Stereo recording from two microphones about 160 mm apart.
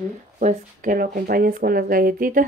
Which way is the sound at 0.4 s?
55° right (ahead or behind).